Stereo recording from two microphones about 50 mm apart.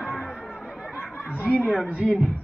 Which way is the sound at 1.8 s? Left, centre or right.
Centre.